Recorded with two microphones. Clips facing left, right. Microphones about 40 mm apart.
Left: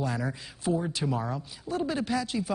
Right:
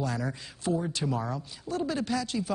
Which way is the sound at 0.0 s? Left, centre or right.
Centre.